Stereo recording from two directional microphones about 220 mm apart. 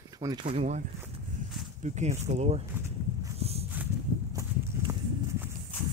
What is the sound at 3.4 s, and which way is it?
Dog, 30° right (ahead or behind).